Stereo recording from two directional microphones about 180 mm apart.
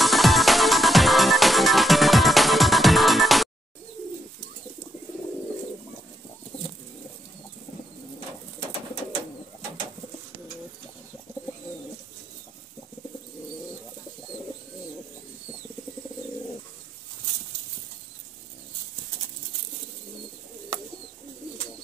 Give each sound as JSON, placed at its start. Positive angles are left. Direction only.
{"t": 0.0, "sound": "music", "side_deg": 0}